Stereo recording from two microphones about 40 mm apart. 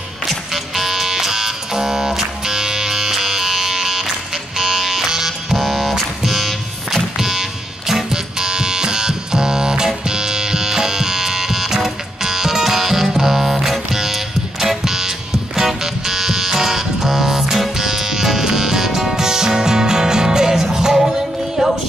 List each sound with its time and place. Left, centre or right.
0.5 s music: centre